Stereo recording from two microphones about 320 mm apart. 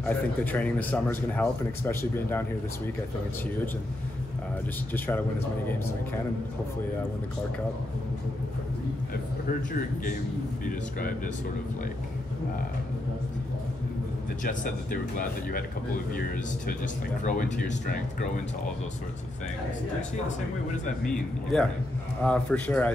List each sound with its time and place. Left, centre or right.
0.0 s a man's voice: centre
4.9 s a man's voice: centre
10.6 s speech: left
14.4 s speech: left
17.2 s speech: left
21.0 s a man's voice: centre